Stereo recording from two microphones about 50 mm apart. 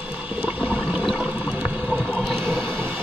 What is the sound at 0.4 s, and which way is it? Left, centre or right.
Water, right.